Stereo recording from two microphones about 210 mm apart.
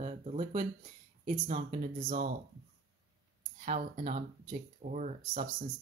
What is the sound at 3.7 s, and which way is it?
Speech, 35° right (ahead or behind).